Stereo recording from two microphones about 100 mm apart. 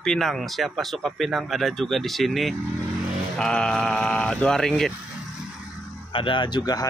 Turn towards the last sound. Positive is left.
turn(degrees=40)  # may be behind; listen again after turning